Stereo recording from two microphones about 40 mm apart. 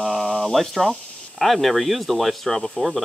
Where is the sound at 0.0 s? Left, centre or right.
Centre.